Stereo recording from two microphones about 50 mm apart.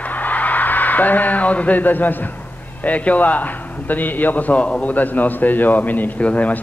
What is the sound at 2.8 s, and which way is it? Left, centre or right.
A man's voice, left.